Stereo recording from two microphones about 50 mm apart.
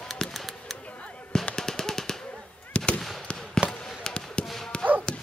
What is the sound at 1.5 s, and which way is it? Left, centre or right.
Machine gun, centre.